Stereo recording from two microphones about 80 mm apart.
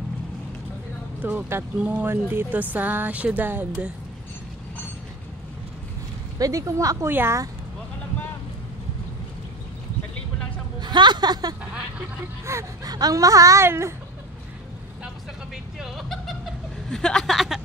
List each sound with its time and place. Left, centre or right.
1.2 s speech: right
2.0 s a sound: right
6.3 s speech: right
7.1 s a sound: right
10.8 s a woman's voice: right
12.5 s speech: right
12.8 s speech: right
15.5 s a sound: centre
16.9 s speech: centre